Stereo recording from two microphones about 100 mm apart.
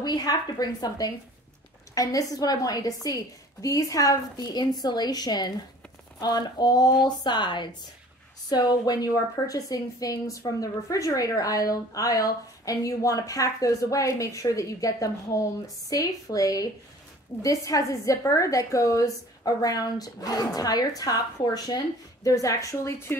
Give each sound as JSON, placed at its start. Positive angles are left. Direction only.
{"t": 0.0, "sound": "a woman's voice", "side_deg": 40}